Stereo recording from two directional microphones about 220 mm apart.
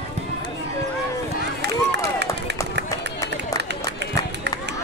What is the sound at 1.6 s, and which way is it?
Run, 50° right (ahead or behind).